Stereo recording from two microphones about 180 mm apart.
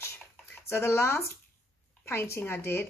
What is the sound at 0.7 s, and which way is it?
Speech, 10° left (ahead or behind).